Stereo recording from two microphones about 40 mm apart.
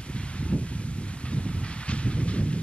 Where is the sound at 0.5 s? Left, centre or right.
Left.